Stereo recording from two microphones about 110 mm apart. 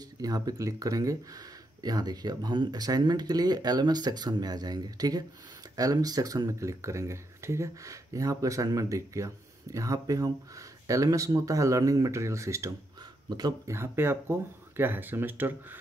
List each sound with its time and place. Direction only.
0.2 s speech: 35° right (ahead or behind)
13.3 s speech: 35° right (ahead or behind)
13.7 s speech: 20° right (ahead or behind)